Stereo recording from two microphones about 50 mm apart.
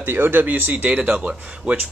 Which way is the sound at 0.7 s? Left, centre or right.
Right.